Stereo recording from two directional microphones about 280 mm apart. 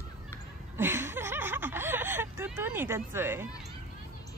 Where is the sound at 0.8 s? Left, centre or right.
Centre.